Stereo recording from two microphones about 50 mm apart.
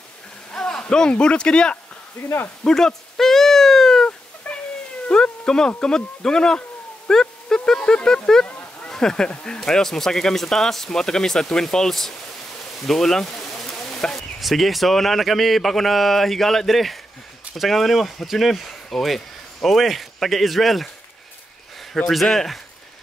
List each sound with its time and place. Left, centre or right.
0.5 s a sound: centre
1.1 s speech: centre
2.2 s speech: left
2.6 s cat: centre
4.4 s cat: left
5.8 s speech: centre
12.7 s a sound: centre
14.4 s a man's voice: centre
22.1 s speech: centre